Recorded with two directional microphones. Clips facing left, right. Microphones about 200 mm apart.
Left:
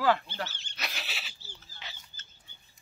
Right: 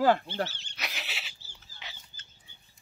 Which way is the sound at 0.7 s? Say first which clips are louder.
Left 1 dB; 15° right (ahead or behind).